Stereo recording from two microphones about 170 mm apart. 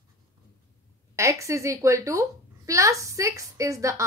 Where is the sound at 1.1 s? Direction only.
15° right (ahead or behind).